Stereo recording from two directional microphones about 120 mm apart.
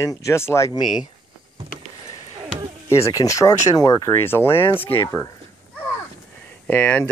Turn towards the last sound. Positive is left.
turn(degrees=15)  # may be behind; listen again after turning